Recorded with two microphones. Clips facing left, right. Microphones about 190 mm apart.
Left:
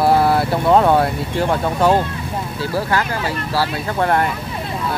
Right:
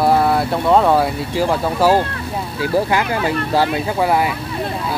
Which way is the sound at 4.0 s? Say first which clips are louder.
Even; 5° right (ahead or behind).